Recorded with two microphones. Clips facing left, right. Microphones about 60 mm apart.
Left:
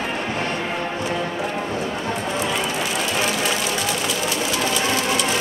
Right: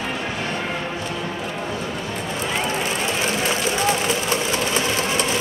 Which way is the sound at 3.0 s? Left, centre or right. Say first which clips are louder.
Even; right.